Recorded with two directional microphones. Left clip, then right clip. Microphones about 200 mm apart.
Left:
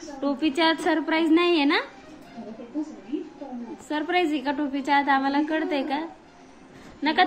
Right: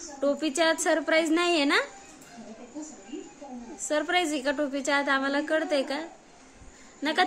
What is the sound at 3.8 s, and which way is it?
A woman's voice, 40° right (ahead or behind).